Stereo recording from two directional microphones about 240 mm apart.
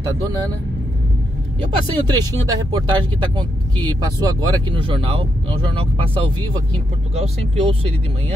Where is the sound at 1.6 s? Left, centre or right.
Centre.